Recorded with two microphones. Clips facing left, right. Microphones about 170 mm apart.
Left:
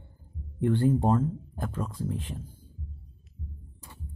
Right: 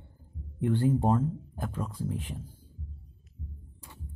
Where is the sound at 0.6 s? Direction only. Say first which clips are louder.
Left 2 dB; 10° right (ahead or behind).